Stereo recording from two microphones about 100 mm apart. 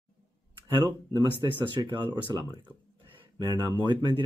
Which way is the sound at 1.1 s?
50° right (ahead or behind).